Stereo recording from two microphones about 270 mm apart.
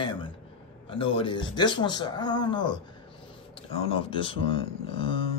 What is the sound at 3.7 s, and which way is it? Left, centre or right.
Speech, centre.